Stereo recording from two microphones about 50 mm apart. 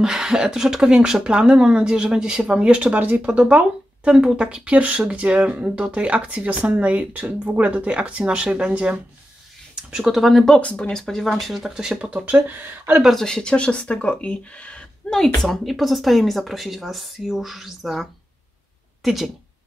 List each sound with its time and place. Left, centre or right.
0.0 s speech: centre
2.9 s speech: right
9.8 s speech: centre
10.1 s speech: centre
10.5 s speech: left
10.9 s speech: centre
11.2 s speech: centre
12.0 s speech: right
13.1 s speech: centre
15.1 s speech: centre
19.0 s speech: centre